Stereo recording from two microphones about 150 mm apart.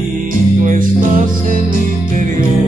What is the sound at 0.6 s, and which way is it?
Music, 65° right (ahead or behind).